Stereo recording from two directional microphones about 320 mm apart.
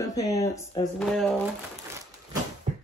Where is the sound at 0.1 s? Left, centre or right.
Centre.